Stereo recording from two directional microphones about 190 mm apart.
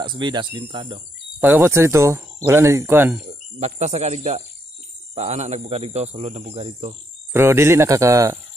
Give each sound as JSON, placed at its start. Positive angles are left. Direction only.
{"t": 0.0, "sound": "speech", "side_deg": -25}
{"t": 1.4, "sound": "speech", "side_deg": -10}
{"t": 3.5, "sound": "a man's voice", "side_deg": -35}
{"t": 7.3, "sound": "speech", "side_deg": -15}